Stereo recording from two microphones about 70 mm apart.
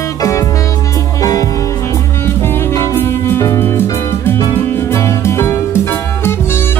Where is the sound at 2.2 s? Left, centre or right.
Left.